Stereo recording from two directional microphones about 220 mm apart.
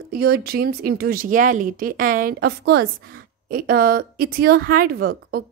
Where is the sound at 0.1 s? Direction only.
45° right (ahead or behind).